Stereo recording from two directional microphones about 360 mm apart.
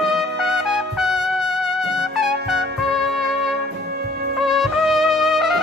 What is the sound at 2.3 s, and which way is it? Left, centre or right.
Music, right.